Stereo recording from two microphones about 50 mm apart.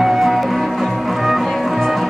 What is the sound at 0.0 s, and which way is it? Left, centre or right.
Music, centre.